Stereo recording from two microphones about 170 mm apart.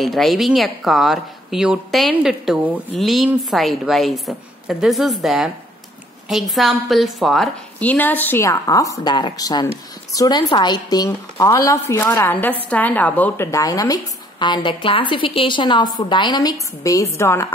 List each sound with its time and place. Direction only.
0.0 s a woman's voice: centre (ahead or behind); by 17.5 s 15° left (ahead or behind)